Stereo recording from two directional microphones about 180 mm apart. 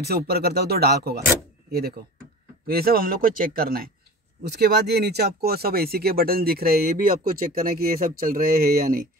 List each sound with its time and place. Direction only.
0.0 s speech: 60° right (ahead or behind)
4.5 s speech: 65° right (ahead or behind)